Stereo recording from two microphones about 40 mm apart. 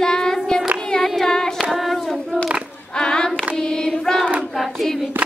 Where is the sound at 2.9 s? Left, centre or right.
Centre.